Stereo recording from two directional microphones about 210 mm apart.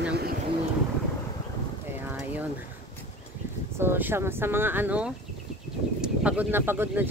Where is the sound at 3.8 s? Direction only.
10° right (ahead or behind).